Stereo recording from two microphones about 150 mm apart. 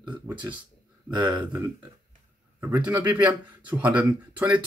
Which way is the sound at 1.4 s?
20° right (ahead or behind).